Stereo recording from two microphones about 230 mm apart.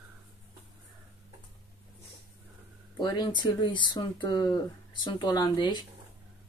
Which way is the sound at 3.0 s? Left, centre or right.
Centre.